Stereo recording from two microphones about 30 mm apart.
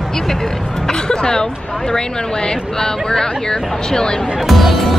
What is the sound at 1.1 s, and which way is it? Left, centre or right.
Hubbub, left.